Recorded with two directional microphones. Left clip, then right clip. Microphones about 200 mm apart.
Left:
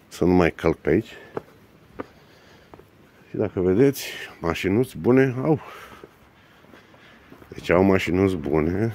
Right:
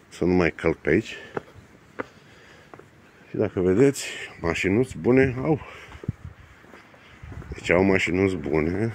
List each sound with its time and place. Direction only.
0.1 s speech: 20° left (ahead or behind)
1.0 s speech: centre (ahead or behind)
3.3 s speech: 5° left (ahead or behind); by 5.9 s 20° left (ahead or behind)
7.5 s speech: 20° left (ahead or behind)